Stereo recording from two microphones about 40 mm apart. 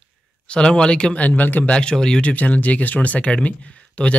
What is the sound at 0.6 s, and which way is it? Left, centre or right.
Speech, left.